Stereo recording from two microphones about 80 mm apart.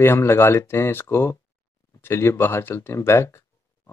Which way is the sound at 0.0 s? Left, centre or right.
Left.